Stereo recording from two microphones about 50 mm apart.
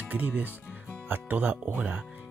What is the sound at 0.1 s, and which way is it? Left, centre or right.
Speech, right.